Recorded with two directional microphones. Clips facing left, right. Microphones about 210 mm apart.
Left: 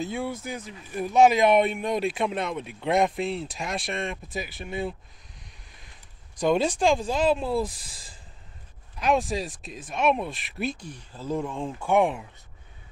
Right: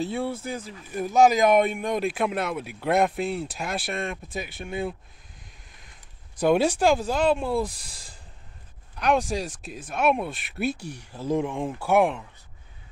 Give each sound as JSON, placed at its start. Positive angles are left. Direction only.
{"t": 0.0, "sound": "speech", "side_deg": -35}
{"t": 1.1, "sound": "speech", "side_deg": -45}
{"t": 1.5, "sound": "speech", "side_deg": 0}
{"t": 6.3, "sound": "speech", "side_deg": -10}